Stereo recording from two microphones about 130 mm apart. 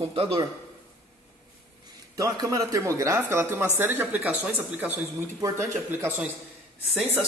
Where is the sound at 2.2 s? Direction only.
25° right (ahead or behind).